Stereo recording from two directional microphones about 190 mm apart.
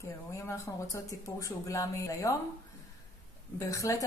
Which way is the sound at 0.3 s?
15° left (ahead or behind).